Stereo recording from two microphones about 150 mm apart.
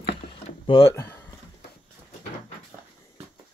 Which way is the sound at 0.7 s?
20° left (ahead or behind).